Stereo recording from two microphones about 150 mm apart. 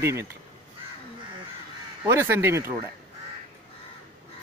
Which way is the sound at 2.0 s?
15° right (ahead or behind).